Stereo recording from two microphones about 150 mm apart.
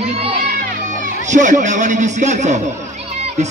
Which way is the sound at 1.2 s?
55° right (ahead or behind).